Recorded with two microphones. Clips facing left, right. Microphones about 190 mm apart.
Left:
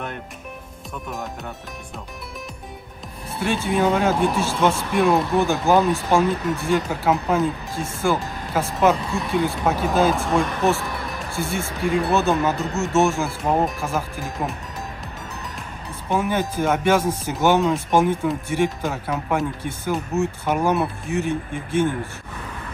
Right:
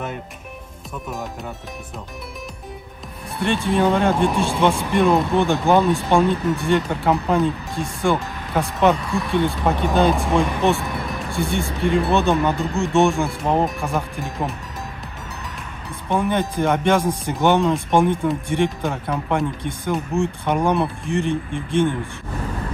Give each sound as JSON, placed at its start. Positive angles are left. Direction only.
{"t": 3.3, "sound": "speech", "side_deg": 0}
{"t": 16.1, "sound": "speech", "side_deg": 5}